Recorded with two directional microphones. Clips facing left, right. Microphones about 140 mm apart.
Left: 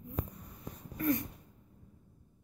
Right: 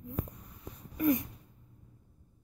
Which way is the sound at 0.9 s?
15° right (ahead or behind).